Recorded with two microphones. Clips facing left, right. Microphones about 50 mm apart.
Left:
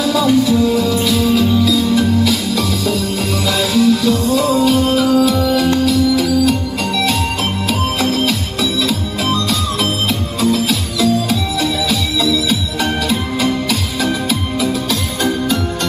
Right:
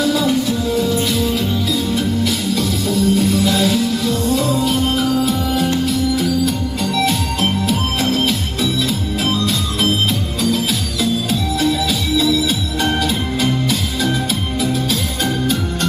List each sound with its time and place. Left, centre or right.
0.7 s music: left
3.2 s music: left